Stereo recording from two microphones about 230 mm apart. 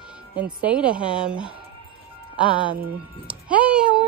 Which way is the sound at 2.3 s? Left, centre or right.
Left.